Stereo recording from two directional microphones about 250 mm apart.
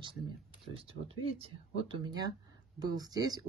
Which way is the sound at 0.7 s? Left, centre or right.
Right.